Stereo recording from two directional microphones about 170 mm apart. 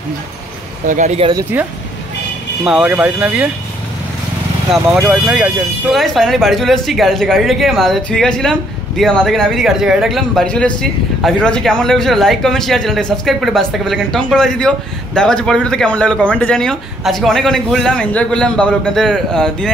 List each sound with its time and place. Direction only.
0.8 s speech: 45° right (ahead or behind)
1.3 s speech: 10° right (ahead or behind)
5.0 s speech: 5° right (ahead or behind)